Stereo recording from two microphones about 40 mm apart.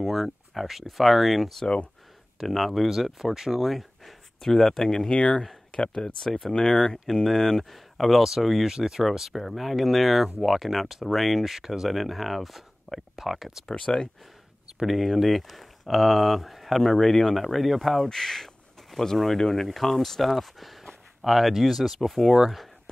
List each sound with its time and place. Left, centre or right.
0.0 s speech: centre
5.1 s speech: left; by 13.7 s centre
13.7 s speech: left
14.9 s speech: centre
16.8 s speech: centre
17.4 s speech: centre